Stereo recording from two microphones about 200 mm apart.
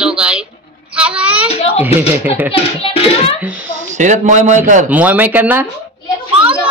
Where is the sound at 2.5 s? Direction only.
30° left (ahead or behind).